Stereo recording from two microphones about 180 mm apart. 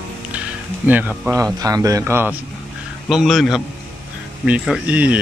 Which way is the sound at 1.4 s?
20° right (ahead or behind).